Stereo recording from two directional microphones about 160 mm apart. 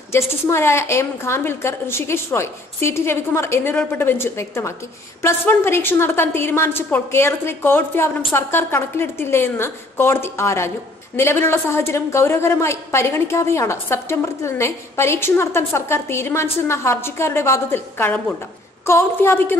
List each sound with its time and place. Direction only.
0.1 s a woman's voice: 15° left (ahead or behind)